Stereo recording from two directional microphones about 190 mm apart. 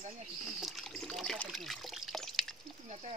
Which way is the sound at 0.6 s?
Centre (ahead or behind).